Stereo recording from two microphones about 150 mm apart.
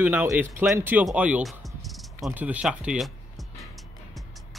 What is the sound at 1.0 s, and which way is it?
Cricket, 10° right (ahead or behind).